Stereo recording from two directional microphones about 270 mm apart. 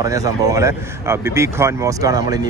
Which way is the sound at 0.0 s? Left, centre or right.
Centre.